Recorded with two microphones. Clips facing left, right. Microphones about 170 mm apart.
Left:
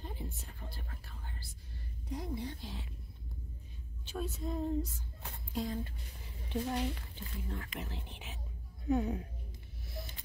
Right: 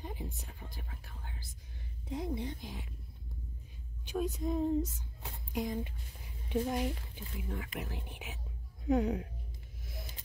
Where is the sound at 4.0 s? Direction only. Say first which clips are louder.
Right 5 dB; 15° right (ahead or behind).